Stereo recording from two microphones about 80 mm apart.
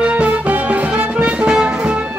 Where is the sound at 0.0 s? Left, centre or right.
Centre.